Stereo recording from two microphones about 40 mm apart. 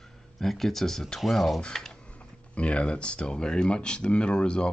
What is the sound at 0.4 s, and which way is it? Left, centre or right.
Speech, centre.